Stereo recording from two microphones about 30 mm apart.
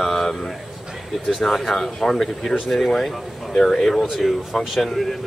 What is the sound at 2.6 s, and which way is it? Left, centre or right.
Speech, centre.